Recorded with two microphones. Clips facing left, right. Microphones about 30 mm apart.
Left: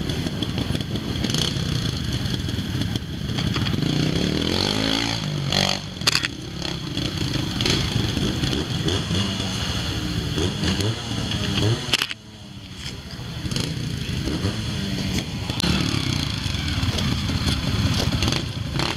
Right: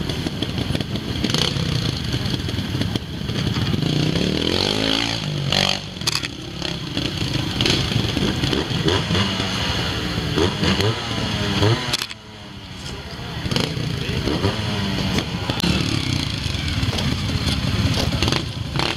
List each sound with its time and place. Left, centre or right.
0.4 s vehicle: centre
7.0 s vehicle: centre
14.2 s vehicle: right
15.6 s vehicle: centre